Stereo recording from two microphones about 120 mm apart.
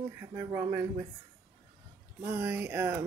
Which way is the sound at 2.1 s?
20° right (ahead or behind).